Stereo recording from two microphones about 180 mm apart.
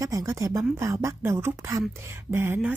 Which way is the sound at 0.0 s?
20° right (ahead or behind).